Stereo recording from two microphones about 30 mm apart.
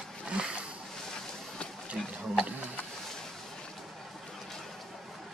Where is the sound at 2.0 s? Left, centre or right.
Centre.